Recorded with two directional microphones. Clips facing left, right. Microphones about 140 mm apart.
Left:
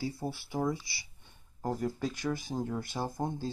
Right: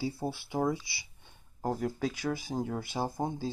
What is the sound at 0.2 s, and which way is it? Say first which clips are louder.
Speech: right 2 dB; 20° right (ahead or behind).